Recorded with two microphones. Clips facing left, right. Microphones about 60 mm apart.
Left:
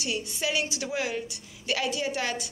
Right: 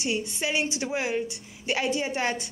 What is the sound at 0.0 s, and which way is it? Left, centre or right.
A woman's voice, right.